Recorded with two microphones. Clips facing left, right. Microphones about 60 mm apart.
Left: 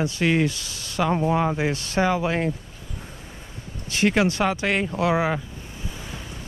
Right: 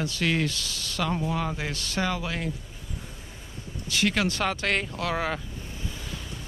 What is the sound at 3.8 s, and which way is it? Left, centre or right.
Speech, left.